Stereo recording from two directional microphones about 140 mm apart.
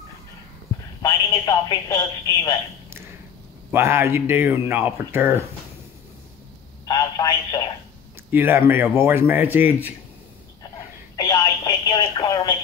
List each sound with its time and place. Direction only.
1.0 s speech: 25° left (ahead or behind)
3.7 s speech: 15° right (ahead or behind)
6.9 s telephone: 25° left (ahead or behind)
8.3 s speech: 15° right (ahead or behind)
11.1 s telephone: 30° left (ahead or behind)